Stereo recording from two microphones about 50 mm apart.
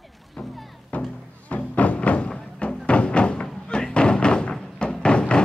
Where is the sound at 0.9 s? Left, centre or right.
Left.